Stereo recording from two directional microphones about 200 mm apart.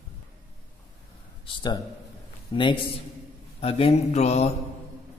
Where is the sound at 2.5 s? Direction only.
25° left (ahead or behind).